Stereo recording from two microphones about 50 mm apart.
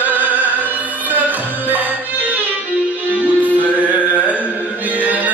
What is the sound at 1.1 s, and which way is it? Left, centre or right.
Music, right.